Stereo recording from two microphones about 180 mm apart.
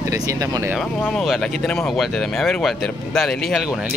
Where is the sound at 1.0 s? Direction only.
Centre (ahead or behind).